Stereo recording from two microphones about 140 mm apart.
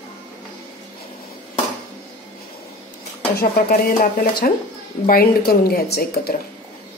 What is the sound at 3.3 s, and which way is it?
Speech, 90° left.